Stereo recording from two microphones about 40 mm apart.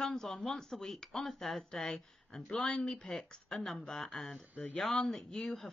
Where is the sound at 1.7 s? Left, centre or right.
Centre.